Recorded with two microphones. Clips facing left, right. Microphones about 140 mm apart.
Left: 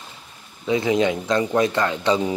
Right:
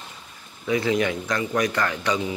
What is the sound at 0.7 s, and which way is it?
Speech, 20° left (ahead or behind).